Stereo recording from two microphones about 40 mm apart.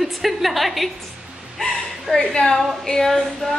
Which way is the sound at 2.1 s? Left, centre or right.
Centre.